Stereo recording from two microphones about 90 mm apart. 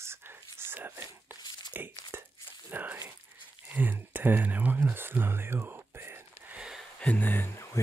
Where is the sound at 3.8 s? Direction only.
20° right (ahead or behind).